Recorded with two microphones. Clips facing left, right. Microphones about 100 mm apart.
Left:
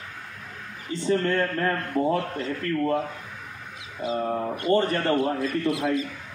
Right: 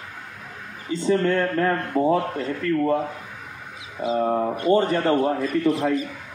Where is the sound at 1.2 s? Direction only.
15° right (ahead or behind).